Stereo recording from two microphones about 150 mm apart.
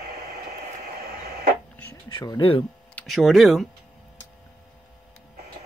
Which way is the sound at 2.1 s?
30° left (ahead or behind).